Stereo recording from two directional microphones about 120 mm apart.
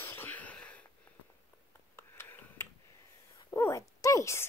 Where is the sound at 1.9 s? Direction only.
20° left (ahead or behind).